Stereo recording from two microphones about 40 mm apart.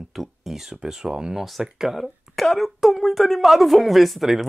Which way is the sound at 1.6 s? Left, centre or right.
Centre.